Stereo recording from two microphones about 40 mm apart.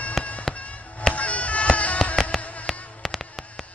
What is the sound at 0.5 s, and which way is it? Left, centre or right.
Music, left.